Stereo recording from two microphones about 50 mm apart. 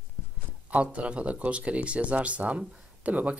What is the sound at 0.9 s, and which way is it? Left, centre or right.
Speech, right.